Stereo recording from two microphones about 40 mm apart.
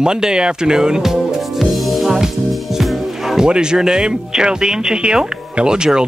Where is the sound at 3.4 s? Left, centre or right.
Right.